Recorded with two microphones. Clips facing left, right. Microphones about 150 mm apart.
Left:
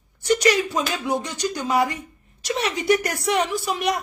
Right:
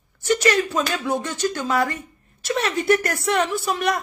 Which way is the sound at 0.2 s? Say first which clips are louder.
Even; 15° left (ahead or behind).